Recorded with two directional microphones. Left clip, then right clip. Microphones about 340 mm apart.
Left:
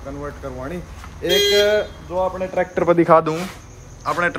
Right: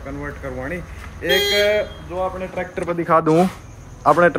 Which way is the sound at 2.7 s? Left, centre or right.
Left.